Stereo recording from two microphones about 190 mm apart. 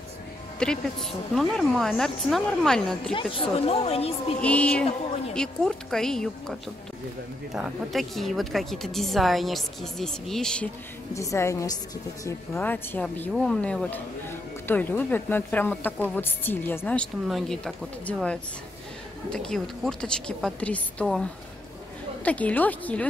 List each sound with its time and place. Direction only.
0.6 s a woman's voice: 5° left (ahead or behind)
3.1 s speech: 30° left (ahead or behind)
4.4 s a woman's voice: 5° left (ahead or behind)
7.5 s a woman's voice: centre (ahead or behind)
11.1 s a woman's voice: 15° left (ahead or behind)